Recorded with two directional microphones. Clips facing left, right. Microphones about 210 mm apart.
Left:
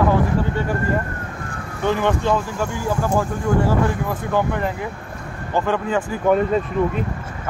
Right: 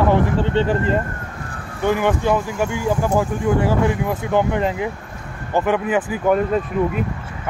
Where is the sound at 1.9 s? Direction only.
10° right (ahead or behind).